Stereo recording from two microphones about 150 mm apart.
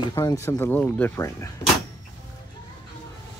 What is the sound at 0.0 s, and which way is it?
Speech, 25° left (ahead or behind).